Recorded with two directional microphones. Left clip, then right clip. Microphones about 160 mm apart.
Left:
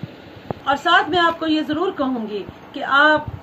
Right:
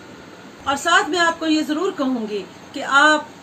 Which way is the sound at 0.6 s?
15° right (ahead or behind).